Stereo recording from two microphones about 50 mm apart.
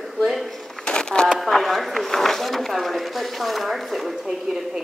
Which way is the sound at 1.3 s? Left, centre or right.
Centre.